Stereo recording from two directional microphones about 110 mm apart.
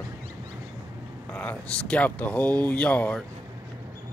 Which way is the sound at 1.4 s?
15° left (ahead or behind).